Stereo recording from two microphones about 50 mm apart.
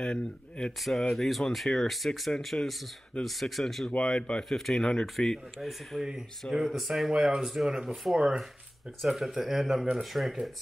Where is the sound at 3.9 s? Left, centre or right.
Left.